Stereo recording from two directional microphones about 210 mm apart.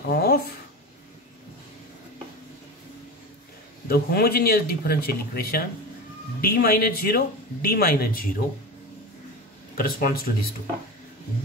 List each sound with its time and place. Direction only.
0.1 s a sound: 45° left (ahead or behind)
3.8 s a man's voice: 45° left (ahead or behind)
9.8 s a man's voice: 45° left (ahead or behind)